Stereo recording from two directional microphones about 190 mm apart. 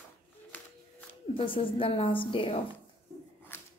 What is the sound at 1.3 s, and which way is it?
A woman's voice, 25° left (ahead or behind).